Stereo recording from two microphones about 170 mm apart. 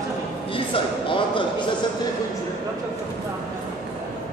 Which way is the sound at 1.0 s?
30° left (ahead or behind).